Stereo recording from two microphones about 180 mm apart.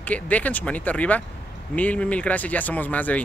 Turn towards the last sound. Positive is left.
turn(degrees=10)  # may be behind; listen again after turning